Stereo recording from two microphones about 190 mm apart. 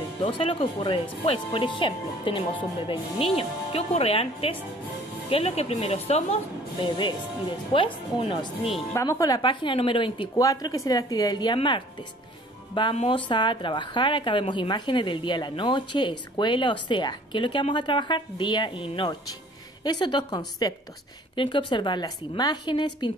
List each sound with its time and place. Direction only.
0.2 s speech: 25° left (ahead or behind)
7.7 s speech: 30° left (ahead or behind)